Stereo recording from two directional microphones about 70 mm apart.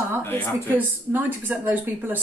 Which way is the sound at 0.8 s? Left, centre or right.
Right.